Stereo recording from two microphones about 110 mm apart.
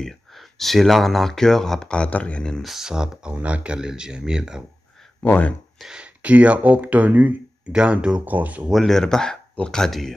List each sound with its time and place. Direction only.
0.0 s speech: centre (ahead or behind)
5.2 s speech: 15° left (ahead or behind)
5.8 s speech: 5° right (ahead or behind)
8.7 s speech: 5° left (ahead or behind)